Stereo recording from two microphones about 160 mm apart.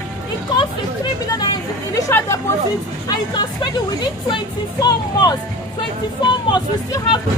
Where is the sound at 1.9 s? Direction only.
20° left (ahead or behind).